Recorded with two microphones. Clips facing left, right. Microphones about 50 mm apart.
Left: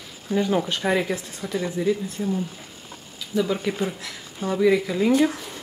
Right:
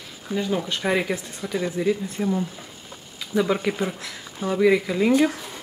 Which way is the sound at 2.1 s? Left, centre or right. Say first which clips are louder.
Right 2 dB; right.